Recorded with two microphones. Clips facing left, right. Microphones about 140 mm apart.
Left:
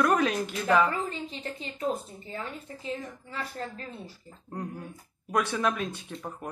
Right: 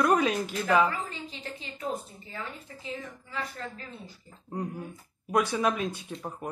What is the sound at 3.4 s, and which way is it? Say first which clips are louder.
Speech: left 1 dB; 30° left (ahead or behind).